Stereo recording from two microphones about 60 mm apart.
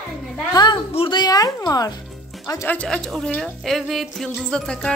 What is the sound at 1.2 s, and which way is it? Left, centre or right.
Speech, left.